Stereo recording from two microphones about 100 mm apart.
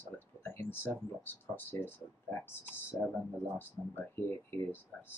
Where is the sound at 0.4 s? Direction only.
20° left (ahead or behind).